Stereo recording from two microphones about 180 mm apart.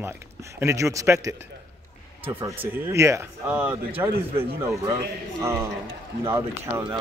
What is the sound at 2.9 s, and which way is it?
Speech, 15° right (ahead or behind).